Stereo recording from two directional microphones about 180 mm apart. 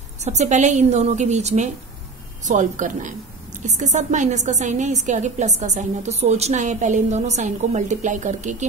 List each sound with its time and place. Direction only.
0.2 s a woman's voice: 40° right (ahead or behind)